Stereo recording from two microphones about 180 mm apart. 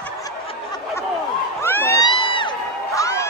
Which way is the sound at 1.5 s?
10° left (ahead or behind).